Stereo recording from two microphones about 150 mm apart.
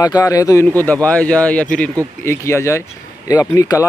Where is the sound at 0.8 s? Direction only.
10° left (ahead or behind).